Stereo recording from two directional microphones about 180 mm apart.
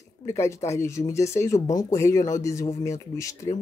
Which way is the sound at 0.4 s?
15° left (ahead or behind).